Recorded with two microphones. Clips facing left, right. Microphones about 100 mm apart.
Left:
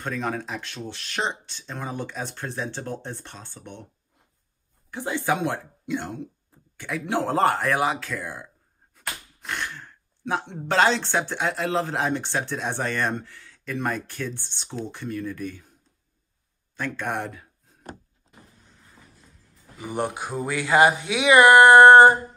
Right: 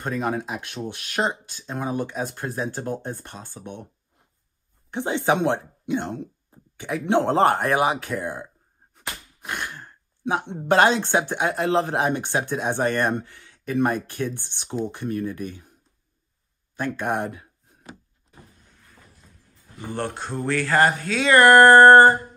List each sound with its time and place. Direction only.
0.0 s speech: 10° right (ahead or behind)
4.9 s speech: 20° right (ahead or behind)
16.7 s speech: 15° right (ahead or behind)
19.8 s speech: 15° left (ahead or behind)